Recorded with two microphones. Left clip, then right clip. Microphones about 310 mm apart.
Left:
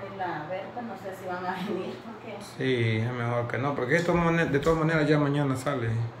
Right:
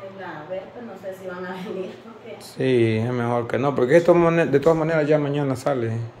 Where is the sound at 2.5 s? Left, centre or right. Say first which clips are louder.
Right 8 dB; centre.